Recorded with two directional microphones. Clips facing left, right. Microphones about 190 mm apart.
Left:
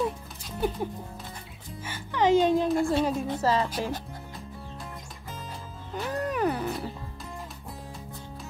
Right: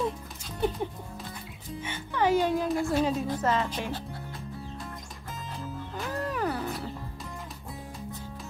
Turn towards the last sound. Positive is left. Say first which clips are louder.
# left 3 dB
turn(degrees=20)  # may be behind; listen again after turning